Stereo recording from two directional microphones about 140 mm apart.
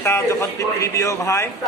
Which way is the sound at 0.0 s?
20° left (ahead or behind).